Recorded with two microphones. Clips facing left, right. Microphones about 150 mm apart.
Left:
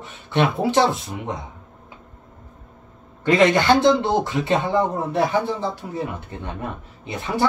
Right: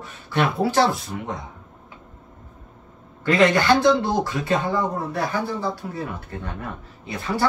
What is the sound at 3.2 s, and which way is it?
Speech, 20° left (ahead or behind).